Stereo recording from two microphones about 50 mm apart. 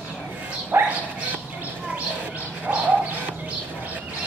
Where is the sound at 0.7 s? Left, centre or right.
Right.